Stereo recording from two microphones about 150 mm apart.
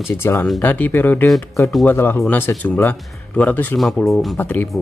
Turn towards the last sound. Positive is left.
turn(degrees=10)  # may be behind; listen again after turning